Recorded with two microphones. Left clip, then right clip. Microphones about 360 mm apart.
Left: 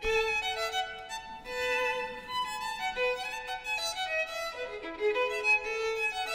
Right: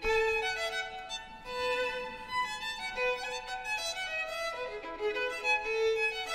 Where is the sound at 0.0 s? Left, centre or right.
Left.